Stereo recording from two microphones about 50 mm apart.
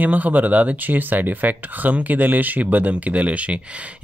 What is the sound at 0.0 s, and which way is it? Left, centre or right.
Speech, right.